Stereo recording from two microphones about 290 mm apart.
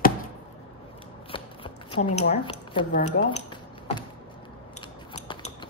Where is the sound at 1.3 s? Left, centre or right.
Centre.